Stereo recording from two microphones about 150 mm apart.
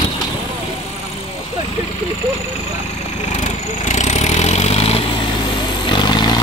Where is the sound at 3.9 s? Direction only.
50° left (ahead or behind).